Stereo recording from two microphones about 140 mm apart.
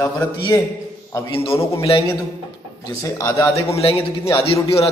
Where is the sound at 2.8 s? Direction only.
25° left (ahead or behind).